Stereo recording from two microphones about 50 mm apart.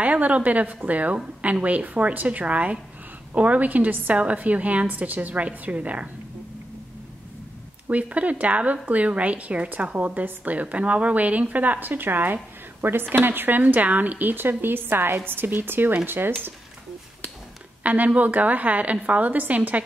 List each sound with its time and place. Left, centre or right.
0.0 s a woman's voice: right
7.9 s a woman's voice: right
17.8 s a woman's voice: right